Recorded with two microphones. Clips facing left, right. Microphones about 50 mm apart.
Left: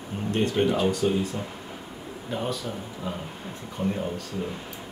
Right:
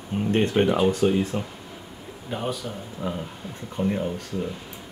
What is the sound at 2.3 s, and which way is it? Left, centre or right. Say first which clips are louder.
Speech: right 1 dB; centre.